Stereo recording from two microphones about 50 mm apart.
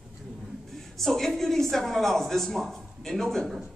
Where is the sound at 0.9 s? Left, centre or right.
Centre.